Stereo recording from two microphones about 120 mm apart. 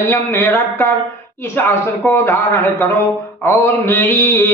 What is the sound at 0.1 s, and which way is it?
A man's voice, 20° left (ahead or behind).